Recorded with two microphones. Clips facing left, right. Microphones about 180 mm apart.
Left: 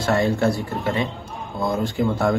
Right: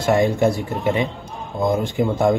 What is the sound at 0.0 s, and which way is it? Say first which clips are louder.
A man's voice: right 3 dB; 20° right (ahead or behind).